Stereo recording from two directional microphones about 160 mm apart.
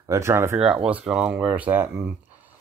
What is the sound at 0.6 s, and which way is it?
Speech, 5° right (ahead or behind).